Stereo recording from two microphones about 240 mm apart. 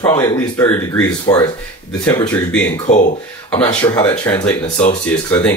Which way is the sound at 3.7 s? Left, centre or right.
Left.